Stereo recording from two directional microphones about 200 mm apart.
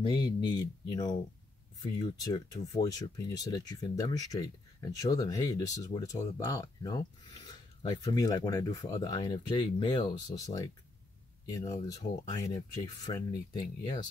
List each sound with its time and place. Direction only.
0.0 s speech: 20° left (ahead or behind)
2.1 s speech: 20° left (ahead or behind)